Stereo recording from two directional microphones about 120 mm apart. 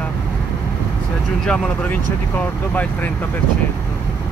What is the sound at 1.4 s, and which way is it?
Speech, 5° left (ahead or behind).